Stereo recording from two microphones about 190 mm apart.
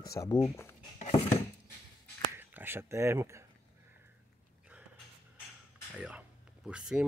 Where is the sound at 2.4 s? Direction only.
10° right (ahead or behind).